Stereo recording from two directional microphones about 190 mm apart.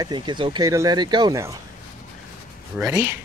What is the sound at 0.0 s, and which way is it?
Speech, 25° right (ahead or behind).